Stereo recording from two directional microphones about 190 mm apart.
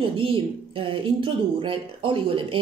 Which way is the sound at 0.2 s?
30° right (ahead or behind).